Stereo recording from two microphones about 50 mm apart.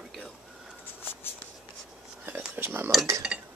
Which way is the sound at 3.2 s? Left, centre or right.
Centre.